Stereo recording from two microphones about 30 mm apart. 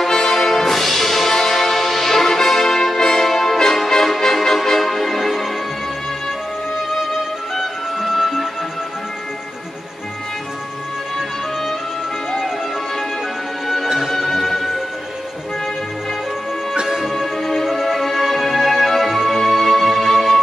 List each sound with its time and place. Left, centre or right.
0.1 s music: centre
7.5 s music: centre
13.8 s music: centre
14.1 s music: centre
17.0 s music: centre
17.6 s music: centre